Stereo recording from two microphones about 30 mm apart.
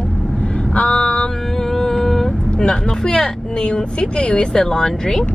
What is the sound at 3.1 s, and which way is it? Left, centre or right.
Speech, left.